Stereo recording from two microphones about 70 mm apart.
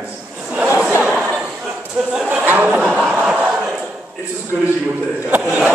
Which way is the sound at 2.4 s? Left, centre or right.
Right.